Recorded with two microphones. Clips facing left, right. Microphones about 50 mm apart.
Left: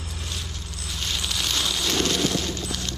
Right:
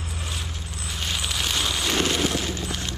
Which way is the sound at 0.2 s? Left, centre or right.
Centre.